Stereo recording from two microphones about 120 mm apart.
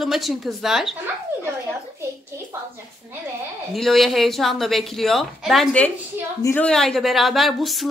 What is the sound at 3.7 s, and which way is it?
A woman's voice, centre (ahead or behind).